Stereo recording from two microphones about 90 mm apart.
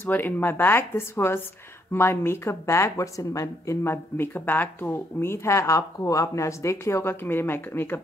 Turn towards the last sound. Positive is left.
turn(degrees=25)  # may be behind; listen again after turning